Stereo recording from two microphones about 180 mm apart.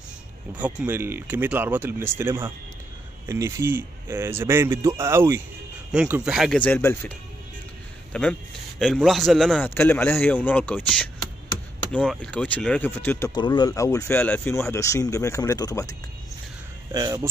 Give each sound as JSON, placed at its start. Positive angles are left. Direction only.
{"t": 0.6, "sound": "speech", "side_deg": -10}
{"t": 6.6, "sound": "speech", "side_deg": 10}
{"t": 8.1, "sound": "speech", "side_deg": 5}
{"t": 13.3, "sound": "speech", "side_deg": 25}
{"t": 16.9, "sound": "speech", "side_deg": -20}